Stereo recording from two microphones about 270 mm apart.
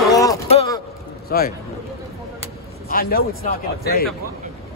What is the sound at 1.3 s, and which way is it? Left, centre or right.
Speech, left.